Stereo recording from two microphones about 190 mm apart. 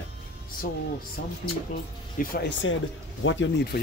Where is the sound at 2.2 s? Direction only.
65° left (ahead or behind).